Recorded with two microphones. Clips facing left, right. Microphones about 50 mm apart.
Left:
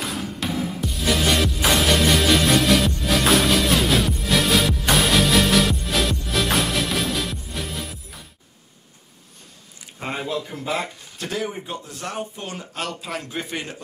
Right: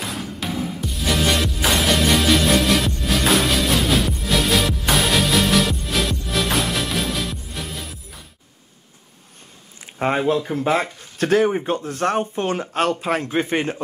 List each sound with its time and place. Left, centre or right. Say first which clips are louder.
0.0 s music: even; centre
9.9 s speech: right 8 dB; right